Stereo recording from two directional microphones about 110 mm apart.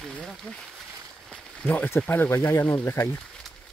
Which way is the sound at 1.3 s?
10° left (ahead or behind).